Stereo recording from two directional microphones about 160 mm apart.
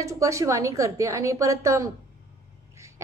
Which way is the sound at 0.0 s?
20° right (ahead or behind).